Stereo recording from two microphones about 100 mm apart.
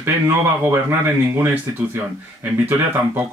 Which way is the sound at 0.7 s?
25° right (ahead or behind).